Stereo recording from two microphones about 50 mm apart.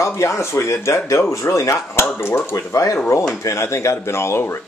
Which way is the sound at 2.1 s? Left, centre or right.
Left.